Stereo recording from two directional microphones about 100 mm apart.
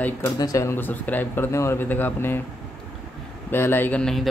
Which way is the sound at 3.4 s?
20° left (ahead or behind).